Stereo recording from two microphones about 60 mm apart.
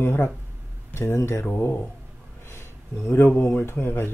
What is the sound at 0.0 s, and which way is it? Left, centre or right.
Speech, left.